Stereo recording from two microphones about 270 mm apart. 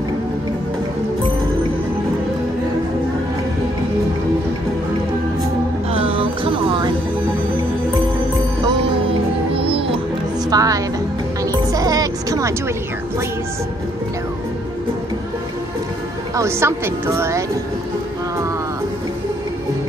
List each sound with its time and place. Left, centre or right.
5.9 s music: right
9.6 s music: right
16.3 s a woman's voice: centre